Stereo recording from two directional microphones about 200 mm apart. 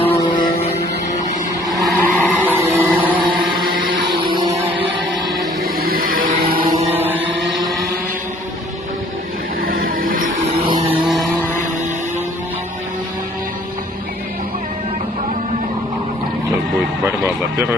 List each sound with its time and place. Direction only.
0.0 s music: 25° left (ahead or behind)
1.9 s vehicle: 10° left (ahead or behind)
2.4 s a sound: 10° right (ahead or behind)
5.6 s music: 45° right (ahead or behind)
7.0 s chant: 5° right (ahead or behind)
9.7 s a sound: 45° right (ahead or behind)
10.8 s vehicle: 30° right (ahead or behind)
11.1 s vehicle: centre (ahead or behind)